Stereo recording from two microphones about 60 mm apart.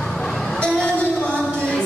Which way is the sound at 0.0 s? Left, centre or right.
Centre.